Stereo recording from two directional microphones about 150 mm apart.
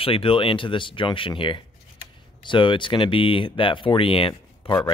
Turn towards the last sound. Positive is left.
turn(degrees=35)  # may be behind; listen again after turning